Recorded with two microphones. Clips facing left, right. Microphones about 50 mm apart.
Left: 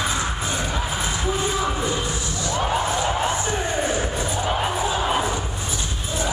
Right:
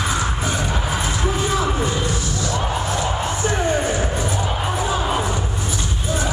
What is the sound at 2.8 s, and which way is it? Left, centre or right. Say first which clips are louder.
Music: even; left.